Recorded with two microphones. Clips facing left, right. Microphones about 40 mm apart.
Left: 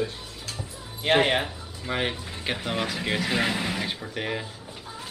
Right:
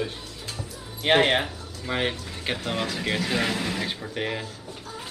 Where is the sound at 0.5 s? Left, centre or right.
Centre.